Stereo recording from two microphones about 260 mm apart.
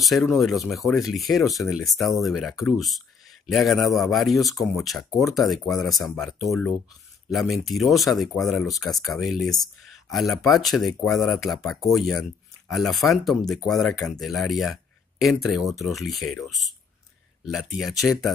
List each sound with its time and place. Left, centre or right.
0.0 s speech: centre